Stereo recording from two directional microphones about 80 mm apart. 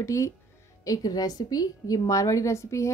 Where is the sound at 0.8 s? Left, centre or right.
Left.